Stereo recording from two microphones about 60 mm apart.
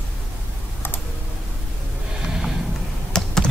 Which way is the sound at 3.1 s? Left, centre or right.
Centre.